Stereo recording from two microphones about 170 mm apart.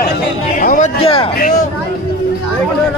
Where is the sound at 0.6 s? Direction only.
55° left (ahead or behind).